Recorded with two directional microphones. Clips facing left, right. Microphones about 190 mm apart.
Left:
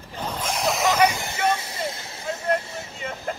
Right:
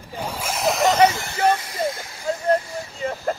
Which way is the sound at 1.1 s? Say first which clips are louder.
Right 1 dB; 20° left (ahead or behind).